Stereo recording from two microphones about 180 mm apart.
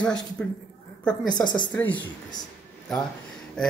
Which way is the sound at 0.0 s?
5° left (ahead or behind).